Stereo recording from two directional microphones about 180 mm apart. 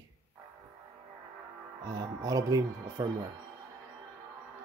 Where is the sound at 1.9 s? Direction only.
20° right (ahead or behind).